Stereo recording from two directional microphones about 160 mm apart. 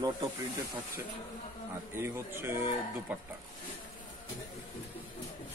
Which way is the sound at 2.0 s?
15° right (ahead or behind).